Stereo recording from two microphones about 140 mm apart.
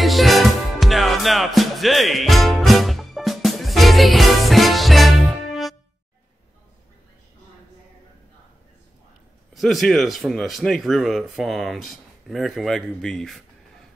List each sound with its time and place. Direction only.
0.0 s music: centre (ahead or behind)
9.5 s speech: centre (ahead or behind)